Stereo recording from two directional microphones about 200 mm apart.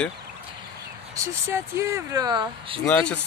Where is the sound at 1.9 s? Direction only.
15° right (ahead or behind).